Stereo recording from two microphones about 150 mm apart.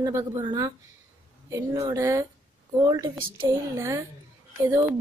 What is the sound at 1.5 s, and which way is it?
Speech, 20° right (ahead or behind).